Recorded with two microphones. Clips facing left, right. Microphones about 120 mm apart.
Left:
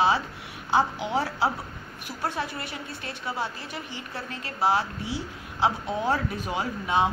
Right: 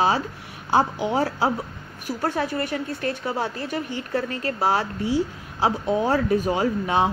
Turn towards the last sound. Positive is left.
turn(degrees=-50)  # may be behind; listen again after turning